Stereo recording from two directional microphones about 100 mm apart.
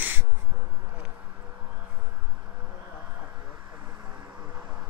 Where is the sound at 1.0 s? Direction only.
20° right (ahead or behind).